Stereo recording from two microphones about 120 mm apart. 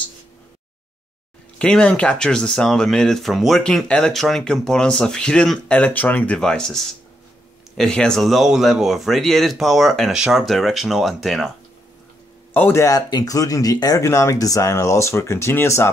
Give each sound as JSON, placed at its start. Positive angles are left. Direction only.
{"t": 1.6, "sound": "speech", "side_deg": 10}
{"t": 12.5, "sound": "speech", "side_deg": 15}
{"t": 12.8, "sound": "speech", "side_deg": 30}